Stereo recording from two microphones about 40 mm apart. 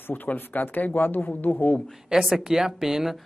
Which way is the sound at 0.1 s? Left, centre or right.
Left.